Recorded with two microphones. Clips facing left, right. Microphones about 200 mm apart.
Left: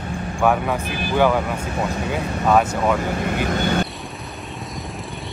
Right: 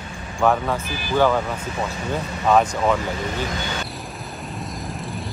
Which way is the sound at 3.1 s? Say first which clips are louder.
Left 4 dB; 60° left (ahead or behind).